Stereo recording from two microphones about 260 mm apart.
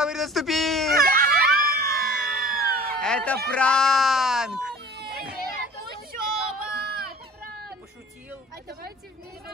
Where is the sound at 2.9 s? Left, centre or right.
Centre.